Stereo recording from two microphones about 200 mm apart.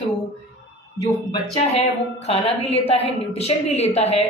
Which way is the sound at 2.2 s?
30° left (ahead or behind).